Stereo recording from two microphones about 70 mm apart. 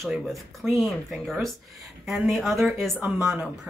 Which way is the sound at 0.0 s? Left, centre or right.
Centre.